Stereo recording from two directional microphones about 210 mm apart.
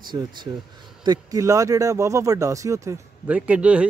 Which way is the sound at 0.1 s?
20° right (ahead or behind).